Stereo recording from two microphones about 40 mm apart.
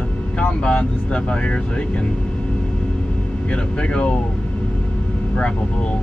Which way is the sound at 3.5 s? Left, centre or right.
Left.